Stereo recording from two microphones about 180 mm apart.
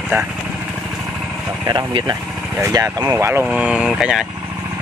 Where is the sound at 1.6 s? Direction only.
25° right (ahead or behind); by 4.2 s 5° right (ahead or behind).